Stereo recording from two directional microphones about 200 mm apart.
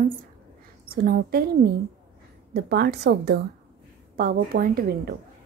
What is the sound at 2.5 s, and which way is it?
A woman's voice, 55° right (ahead or behind).